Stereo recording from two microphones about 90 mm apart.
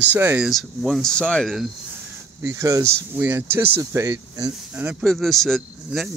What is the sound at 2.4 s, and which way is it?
Speech, 35° right (ahead or behind).